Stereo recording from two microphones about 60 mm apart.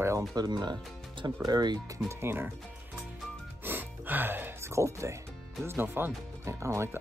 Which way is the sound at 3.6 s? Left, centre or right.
Right.